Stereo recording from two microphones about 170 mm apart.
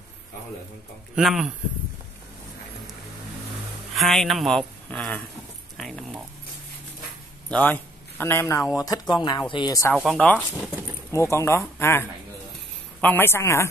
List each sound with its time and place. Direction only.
1.1 s speech: 5° right (ahead or behind)
3.9 s speech: centre (ahead or behind)
7.4 s speech: 10° left (ahead or behind)
9.9 s speech: centre (ahead or behind)
11.1 s speech: 15° left (ahead or behind)